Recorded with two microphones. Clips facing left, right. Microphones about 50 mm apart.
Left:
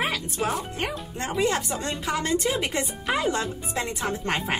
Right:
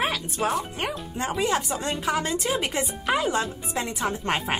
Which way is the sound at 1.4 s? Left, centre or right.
Centre.